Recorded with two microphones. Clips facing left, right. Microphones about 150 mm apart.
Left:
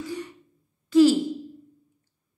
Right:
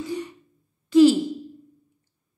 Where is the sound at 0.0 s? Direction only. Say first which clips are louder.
Right 3 dB; 20° right (ahead or behind).